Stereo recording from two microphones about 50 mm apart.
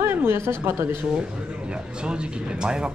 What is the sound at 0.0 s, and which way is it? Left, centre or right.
Speech, right.